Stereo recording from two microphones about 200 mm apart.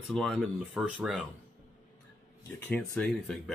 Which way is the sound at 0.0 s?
Centre (ahead or behind).